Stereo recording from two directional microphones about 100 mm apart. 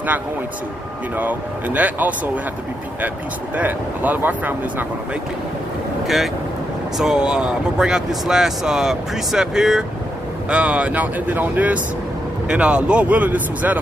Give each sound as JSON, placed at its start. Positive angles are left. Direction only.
{"t": 1.1, "sound": "speech", "side_deg": -15}
{"t": 3.5, "sound": "speech", "side_deg": -15}
{"t": 6.0, "sound": "speech", "side_deg": 0}